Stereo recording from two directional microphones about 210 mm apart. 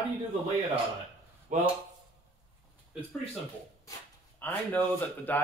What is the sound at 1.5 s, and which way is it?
Speech, 35° right (ahead or behind).